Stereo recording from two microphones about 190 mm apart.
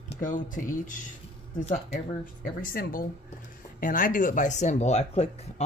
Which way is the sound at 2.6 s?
50° left (ahead or behind).